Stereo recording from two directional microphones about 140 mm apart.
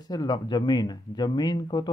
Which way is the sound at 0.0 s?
30° left (ahead or behind).